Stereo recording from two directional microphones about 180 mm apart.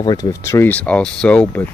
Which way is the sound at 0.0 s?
20° left (ahead or behind).